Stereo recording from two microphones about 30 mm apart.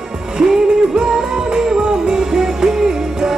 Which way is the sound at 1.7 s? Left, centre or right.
Right.